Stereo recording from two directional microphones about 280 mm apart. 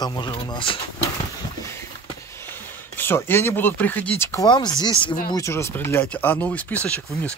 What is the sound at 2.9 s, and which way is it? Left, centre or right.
Speech, centre.